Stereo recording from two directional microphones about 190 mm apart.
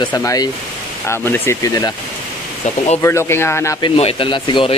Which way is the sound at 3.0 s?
15° left (ahead or behind).